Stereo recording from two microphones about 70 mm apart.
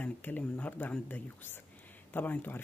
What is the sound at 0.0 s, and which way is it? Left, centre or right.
Speech, left.